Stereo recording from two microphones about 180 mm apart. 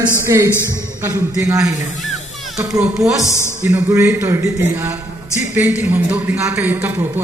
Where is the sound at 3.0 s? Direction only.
15° right (ahead or behind).